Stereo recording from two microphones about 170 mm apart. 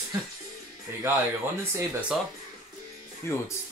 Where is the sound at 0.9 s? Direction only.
15° right (ahead or behind).